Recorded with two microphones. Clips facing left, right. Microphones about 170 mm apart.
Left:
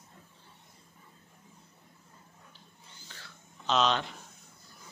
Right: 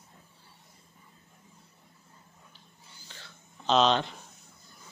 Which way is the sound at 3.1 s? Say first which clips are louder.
Right 1 dB; 20° right (ahead or behind).